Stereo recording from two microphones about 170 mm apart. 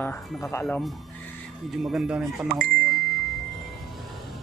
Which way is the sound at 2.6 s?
Centre (ahead or behind).